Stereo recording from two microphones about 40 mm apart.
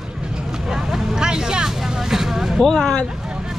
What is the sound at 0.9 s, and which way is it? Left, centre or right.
Speech, centre.